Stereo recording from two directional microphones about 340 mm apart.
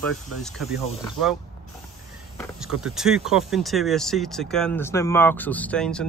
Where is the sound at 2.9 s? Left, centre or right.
Centre.